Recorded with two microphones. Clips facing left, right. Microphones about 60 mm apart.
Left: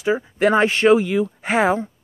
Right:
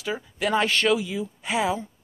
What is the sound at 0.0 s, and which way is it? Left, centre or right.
Speech, left.